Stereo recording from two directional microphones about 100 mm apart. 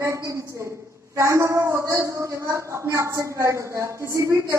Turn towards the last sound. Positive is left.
turn(degrees=-30)  # may be behind; listen again after turning